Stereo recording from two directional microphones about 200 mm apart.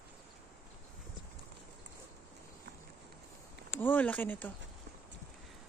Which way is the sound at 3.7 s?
10° left (ahead or behind).